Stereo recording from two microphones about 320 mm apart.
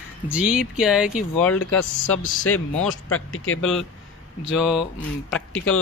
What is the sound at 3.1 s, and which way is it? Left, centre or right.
Speech, left.